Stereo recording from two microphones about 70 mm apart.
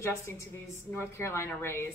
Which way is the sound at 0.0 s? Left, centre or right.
Left.